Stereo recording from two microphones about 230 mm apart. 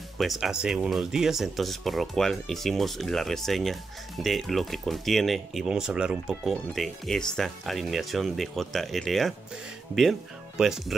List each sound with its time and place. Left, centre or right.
0.2 s speech: centre
10.6 s speech: centre